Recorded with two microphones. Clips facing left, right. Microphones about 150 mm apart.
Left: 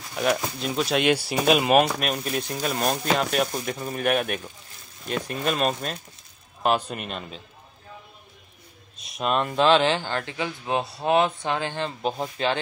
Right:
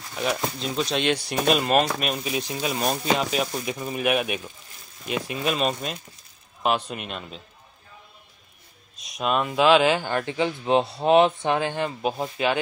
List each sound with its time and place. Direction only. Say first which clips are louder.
0.1 s speech: left 2 dB; centre (ahead or behind)
8.9 s speech: even; centre (ahead or behind)